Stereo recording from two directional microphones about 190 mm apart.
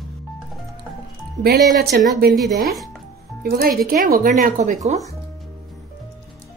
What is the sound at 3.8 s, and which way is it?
Speech, 50° right (ahead or behind).